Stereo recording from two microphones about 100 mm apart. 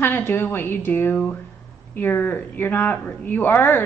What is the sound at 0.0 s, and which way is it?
A woman's voice, 20° left (ahead or behind).